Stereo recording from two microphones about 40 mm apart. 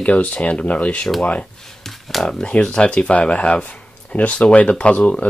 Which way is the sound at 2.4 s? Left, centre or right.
Left.